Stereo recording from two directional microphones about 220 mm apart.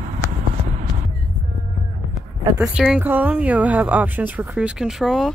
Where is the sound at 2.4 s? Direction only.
5° right (ahead or behind).